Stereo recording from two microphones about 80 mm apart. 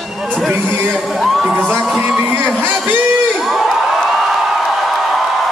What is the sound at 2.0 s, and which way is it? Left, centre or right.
Music, centre.